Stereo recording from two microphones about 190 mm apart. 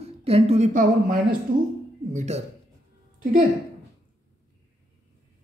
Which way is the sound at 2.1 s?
40° right (ahead or behind).